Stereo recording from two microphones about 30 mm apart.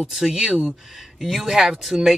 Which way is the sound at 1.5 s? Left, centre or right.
Centre.